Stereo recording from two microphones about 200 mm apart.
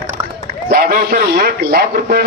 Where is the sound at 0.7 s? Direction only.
45° right (ahead or behind).